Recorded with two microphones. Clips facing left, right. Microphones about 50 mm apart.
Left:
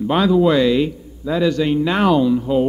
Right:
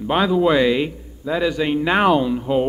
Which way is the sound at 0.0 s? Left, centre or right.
Centre.